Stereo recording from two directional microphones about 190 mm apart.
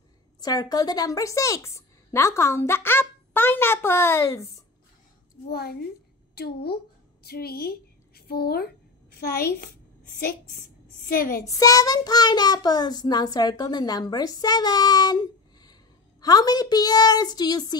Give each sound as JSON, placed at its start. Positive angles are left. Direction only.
{"t": 0.4, "sound": "a woman's voice", "side_deg": 20}
{"t": 5.5, "sound": "a woman's voice", "side_deg": 55}
{"t": 11.1, "sound": "a woman's voice", "side_deg": 50}
{"t": 11.4, "sound": "child singing", "side_deg": 20}